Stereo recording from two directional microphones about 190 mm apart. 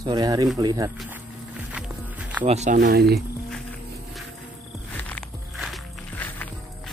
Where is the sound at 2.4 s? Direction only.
40° right (ahead or behind); by 3.1 s 55° right (ahead or behind).